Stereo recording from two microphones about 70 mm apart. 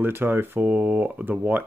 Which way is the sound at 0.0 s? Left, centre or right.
Right.